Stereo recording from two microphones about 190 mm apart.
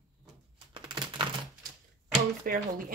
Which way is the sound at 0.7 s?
25° right (ahead or behind).